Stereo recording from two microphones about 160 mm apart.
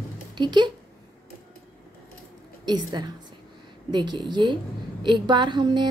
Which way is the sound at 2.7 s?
25° right (ahead or behind).